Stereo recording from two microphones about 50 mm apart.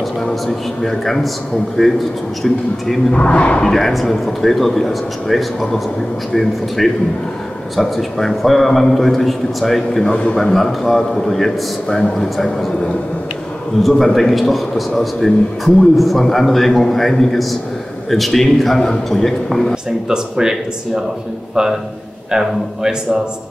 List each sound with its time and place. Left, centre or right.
0.2 s a man's voice: centre
3.1 s speech: left
3.6 s a man's voice: centre
19.7 s speech: centre
22.3 s speech: centre